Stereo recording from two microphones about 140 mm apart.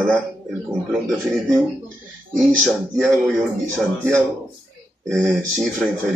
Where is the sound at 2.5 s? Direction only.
5° left (ahead or behind).